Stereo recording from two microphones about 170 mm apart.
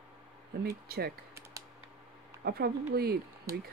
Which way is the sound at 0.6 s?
65° right (ahead or behind).